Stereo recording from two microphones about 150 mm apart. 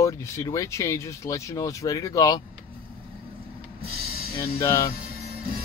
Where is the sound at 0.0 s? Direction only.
20° left (ahead or behind).